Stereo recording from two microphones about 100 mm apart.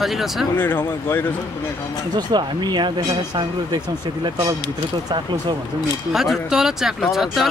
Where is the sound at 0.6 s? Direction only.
20° left (ahead or behind).